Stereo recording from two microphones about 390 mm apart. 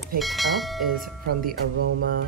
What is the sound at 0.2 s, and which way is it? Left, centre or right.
Speech, centre.